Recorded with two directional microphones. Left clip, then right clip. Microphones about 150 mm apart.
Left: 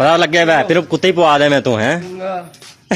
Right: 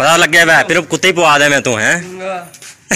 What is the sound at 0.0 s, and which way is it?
A man's voice, 5° left (ahead or behind).